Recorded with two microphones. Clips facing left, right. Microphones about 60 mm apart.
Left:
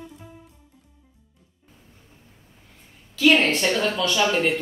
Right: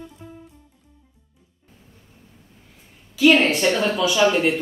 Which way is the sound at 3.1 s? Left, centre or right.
Centre.